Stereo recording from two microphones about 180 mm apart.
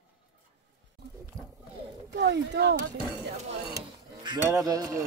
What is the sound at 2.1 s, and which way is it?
Speech, 75° right (ahead or behind).